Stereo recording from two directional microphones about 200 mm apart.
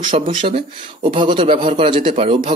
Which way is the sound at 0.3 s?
25° right (ahead or behind).